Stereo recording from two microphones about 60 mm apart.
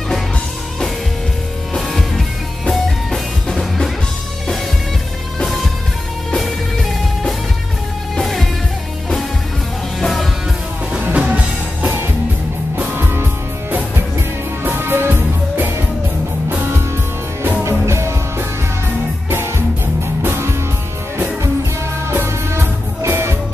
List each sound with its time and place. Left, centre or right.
1.7 s music: centre
8.2 s music: centre
9.9 s music: centre
11.2 s music: right
12.9 s music: right
17.6 s music: right
20.2 s music: right
23.0 s music: right